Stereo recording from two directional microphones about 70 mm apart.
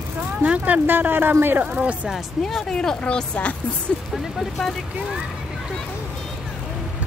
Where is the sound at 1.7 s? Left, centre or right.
Centre.